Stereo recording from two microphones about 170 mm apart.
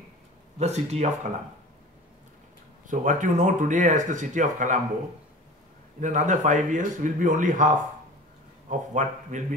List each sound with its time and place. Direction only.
0.6 s speech: 40° right (ahead or behind)
2.9 s speech: 50° right (ahead or behind)
5.9 s a man's voice: 45° right (ahead or behind)